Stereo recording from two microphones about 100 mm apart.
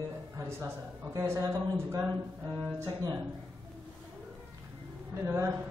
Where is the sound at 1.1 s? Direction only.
30° right (ahead or behind).